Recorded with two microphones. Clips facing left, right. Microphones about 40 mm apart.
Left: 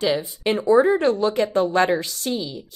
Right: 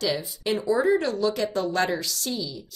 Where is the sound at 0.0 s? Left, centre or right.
Left.